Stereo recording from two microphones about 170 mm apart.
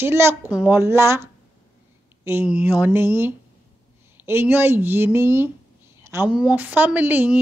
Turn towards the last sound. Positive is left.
turn(degrees=-10)  # may be behind; listen again after turning